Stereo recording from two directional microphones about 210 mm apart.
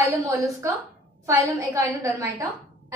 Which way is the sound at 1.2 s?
15° right (ahead or behind).